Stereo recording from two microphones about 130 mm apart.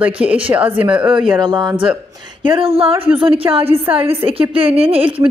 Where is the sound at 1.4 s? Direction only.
35° right (ahead or behind).